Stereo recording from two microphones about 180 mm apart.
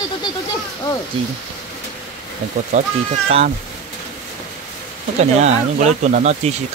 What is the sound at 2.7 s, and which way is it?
Speech, 40° right (ahead or behind).